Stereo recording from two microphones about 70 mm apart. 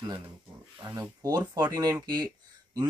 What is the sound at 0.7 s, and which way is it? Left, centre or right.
Speech, right.